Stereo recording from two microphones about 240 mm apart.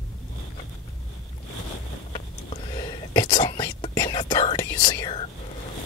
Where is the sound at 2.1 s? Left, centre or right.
Left.